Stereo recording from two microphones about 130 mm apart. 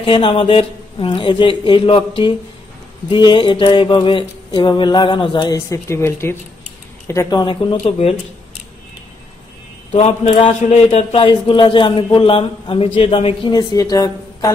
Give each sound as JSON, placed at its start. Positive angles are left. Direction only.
{"t": 0.0, "sound": "speech", "side_deg": 40}
{"t": 7.2, "sound": "speech", "side_deg": 35}
{"t": 7.8, "sound": "a man's voice", "side_deg": 50}
{"t": 9.9, "sound": "a man's voice", "side_deg": 55}
{"t": 13.5, "sound": "speech", "side_deg": 30}